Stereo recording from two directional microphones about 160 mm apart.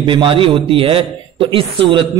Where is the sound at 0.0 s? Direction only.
30° right (ahead or behind).